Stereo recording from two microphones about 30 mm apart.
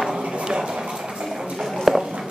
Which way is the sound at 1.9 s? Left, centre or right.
Centre.